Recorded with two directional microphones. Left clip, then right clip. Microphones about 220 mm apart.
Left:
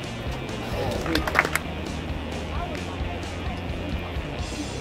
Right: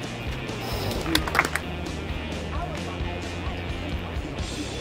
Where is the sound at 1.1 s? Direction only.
45° right (ahead or behind).